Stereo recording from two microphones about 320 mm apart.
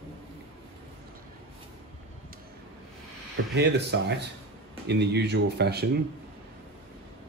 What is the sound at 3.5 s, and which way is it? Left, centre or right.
Speech, right.